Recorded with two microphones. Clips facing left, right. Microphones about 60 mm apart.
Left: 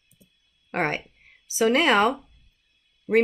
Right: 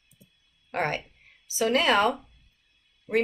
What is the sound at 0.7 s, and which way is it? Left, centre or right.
A woman's voice, left.